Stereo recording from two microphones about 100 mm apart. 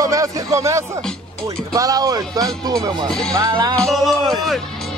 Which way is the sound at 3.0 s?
5° left (ahead or behind).